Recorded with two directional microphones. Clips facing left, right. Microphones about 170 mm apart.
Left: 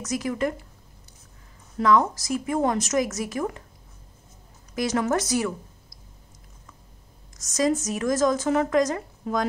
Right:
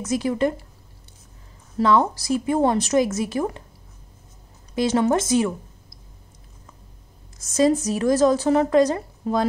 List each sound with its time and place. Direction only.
0.0 s a woman's voice: 30° right (ahead or behind)
1.8 s a woman's voice: 30° right (ahead or behind)
4.7 s a woman's voice: 30° right (ahead or behind)
7.3 s speech: 30° right (ahead or behind)